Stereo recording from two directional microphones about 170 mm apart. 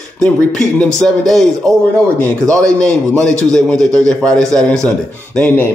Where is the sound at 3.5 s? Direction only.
5° left (ahead or behind).